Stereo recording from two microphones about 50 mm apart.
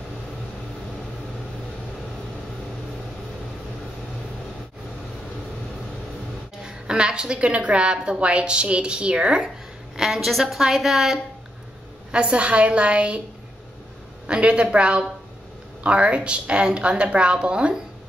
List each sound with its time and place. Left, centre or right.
6.6 s a woman's voice: centre
9.9 s a woman's voice: centre
12.1 s a woman's voice: right
14.2 s a woman's voice: right